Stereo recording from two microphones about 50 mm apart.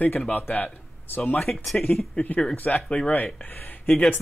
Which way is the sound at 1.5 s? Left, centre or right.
Centre.